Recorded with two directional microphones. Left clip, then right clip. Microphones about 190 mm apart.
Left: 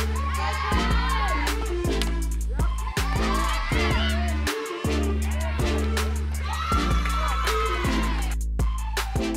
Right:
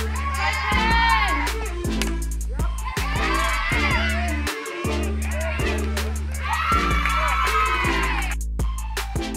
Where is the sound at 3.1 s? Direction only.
20° right (ahead or behind).